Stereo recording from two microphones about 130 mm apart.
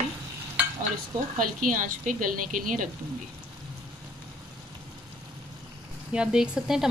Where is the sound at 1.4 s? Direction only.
90° right.